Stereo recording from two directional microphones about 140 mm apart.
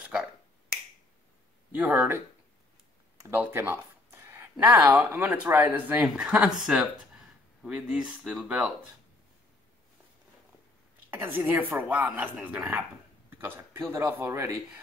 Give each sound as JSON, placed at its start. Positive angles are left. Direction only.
{"t": 0.0, "sound": "finger snapping", "side_deg": -10}
{"t": 1.7, "sound": "speech", "side_deg": -10}
{"t": 3.2, "sound": "a sound", "side_deg": -15}
{"t": 5.1, "sound": "speech", "side_deg": -10}
{"t": 11.1, "sound": "speech", "side_deg": -15}